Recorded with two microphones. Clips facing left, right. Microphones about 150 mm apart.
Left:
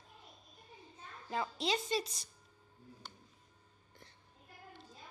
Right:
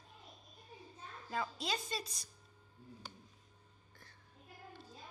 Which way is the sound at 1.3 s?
25° left (ahead or behind).